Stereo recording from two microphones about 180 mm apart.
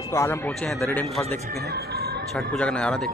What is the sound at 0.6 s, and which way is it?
Speech, centre (ahead or behind).